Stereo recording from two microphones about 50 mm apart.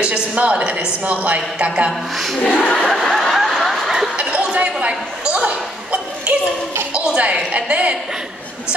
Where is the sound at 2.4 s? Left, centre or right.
Left.